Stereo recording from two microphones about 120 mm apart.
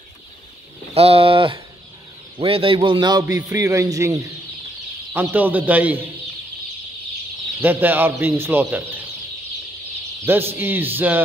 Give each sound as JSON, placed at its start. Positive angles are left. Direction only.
{"t": 0.9, "sound": "a man's voice", "side_deg": -55}
{"t": 5.1, "sound": "speech", "side_deg": -15}
{"t": 7.6, "sound": "speech", "side_deg": -15}
{"t": 10.5, "sound": "speech", "side_deg": -15}